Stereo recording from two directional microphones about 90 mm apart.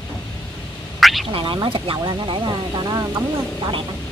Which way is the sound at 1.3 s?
70° right (ahead or behind).